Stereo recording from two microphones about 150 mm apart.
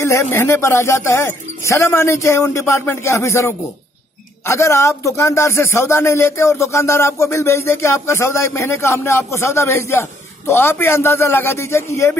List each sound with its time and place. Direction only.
0.0 s speech: 20° left (ahead or behind)